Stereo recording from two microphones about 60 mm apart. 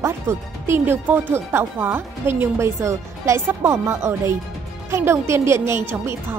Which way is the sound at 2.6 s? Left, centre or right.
Right.